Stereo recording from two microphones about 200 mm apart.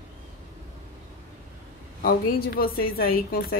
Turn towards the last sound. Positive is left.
turn(degrees=50)  # may be behind; listen again after turning